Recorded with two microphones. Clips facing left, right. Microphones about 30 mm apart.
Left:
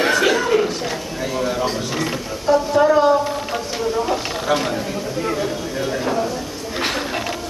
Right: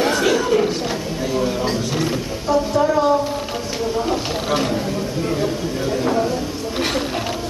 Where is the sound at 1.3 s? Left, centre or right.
Centre.